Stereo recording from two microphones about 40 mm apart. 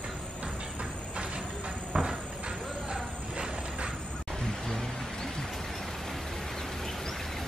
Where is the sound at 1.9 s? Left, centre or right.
Right.